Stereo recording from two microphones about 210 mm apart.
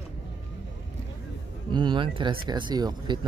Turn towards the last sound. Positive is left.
turn(degrees=-20)  # may be behind; listen again after turning